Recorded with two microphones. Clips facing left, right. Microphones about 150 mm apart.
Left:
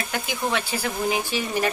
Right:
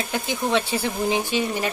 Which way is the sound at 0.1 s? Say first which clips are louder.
Right 3 dB; 25° right (ahead or behind).